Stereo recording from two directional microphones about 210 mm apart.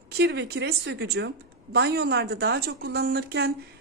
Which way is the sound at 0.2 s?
55° right (ahead or behind).